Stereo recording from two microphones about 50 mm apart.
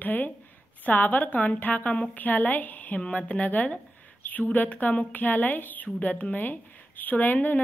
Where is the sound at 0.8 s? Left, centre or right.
Left.